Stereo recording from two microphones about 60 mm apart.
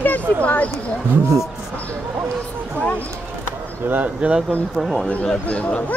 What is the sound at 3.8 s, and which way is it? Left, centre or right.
Speech, right.